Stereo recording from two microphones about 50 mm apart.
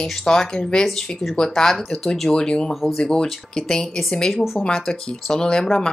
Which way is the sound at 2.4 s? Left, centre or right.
Centre.